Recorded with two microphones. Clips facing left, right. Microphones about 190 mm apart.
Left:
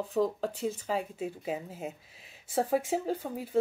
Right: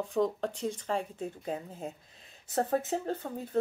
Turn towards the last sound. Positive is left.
turn(degrees=10)  # may be behind; listen again after turning